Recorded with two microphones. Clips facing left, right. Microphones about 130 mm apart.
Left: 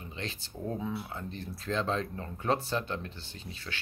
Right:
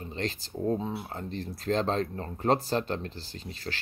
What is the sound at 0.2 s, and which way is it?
Speech, 30° right (ahead or behind).